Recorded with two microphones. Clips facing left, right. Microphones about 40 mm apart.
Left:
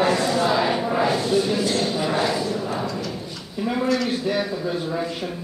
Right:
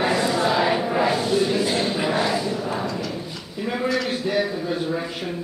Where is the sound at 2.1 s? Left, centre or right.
Centre.